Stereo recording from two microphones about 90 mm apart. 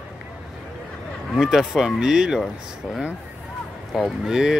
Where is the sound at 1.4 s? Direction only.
5° right (ahead or behind).